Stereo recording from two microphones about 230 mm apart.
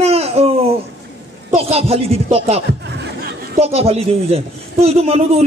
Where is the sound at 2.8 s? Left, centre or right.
Right.